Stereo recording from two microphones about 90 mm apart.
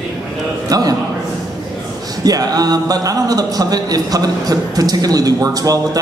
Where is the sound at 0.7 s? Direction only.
45° right (ahead or behind).